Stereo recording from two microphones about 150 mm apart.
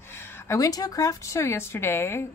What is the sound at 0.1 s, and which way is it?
A woman's voice, 15° left (ahead or behind).